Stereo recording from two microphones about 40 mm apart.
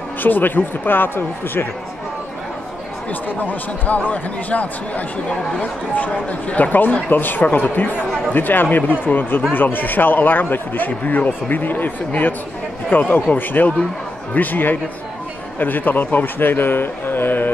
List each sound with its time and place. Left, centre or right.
0.2 s speech: left
3.1 s speech: left
7.4 s speech: left